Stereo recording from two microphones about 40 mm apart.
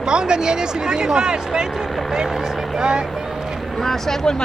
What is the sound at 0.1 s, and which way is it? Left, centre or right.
Speech, right.